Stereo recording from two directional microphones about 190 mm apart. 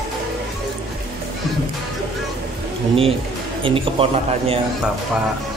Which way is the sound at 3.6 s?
30° right (ahead or behind).